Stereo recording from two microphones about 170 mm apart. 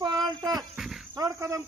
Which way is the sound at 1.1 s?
20° right (ahead or behind).